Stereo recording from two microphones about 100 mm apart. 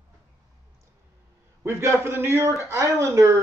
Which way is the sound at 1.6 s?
25° right (ahead or behind).